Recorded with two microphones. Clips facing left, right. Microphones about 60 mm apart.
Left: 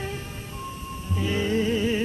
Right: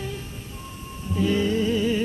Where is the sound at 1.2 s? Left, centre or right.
Centre.